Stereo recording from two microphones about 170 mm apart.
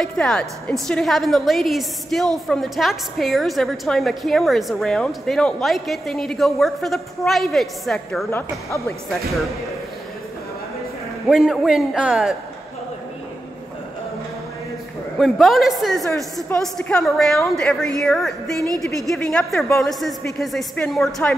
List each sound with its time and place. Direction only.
0.0 s a woman's voice: 5° left (ahead or behind)
8.3 s speech: 15° left (ahead or behind)
11.2 s a woman's voice: centre (ahead or behind)
15.1 s a woman's voice: centre (ahead or behind)